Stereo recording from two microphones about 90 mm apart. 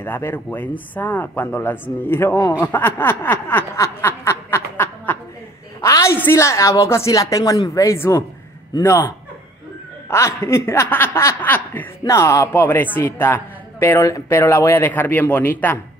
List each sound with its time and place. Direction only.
0.0 s speech: 25° left (ahead or behind)
2.6 s a sound: 25° left (ahead or behind)
6.1 s a woman's voice: 30° left (ahead or behind); by 7.8 s 45° left (ahead or behind)
7.8 s a woman's voice: 35° left (ahead or behind); by 11.9 s 20° left (ahead or behind)
12.1 s a woman's voice: 35° left (ahead or behind)
12.5 s speech: 25° left (ahead or behind)
14.0 s a woman's voice: 40° left (ahead or behind)
14.4 s speech: 30° left (ahead or behind)